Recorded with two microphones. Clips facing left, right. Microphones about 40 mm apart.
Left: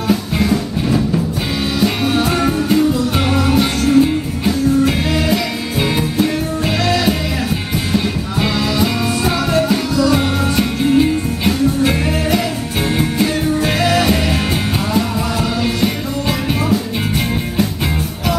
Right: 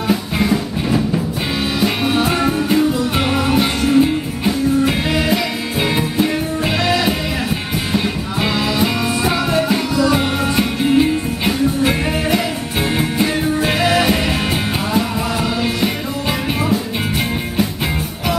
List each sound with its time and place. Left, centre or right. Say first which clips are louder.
0.1 s music: left 1 dB; centre